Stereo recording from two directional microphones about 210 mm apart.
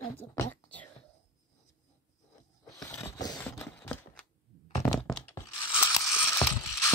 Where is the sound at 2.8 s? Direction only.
10° left (ahead or behind).